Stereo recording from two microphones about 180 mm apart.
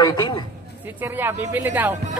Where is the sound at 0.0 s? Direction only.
25° left (ahead or behind).